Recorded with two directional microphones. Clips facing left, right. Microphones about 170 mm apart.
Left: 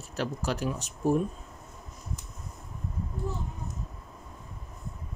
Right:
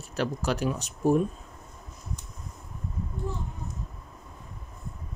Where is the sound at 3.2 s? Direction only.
5° left (ahead or behind).